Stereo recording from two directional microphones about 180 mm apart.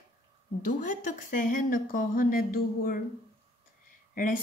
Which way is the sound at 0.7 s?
45° left (ahead or behind).